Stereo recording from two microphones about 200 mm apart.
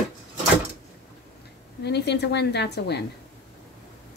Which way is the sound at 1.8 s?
55° left (ahead or behind).